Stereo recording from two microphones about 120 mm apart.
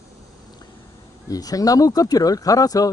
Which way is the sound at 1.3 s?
30° left (ahead or behind).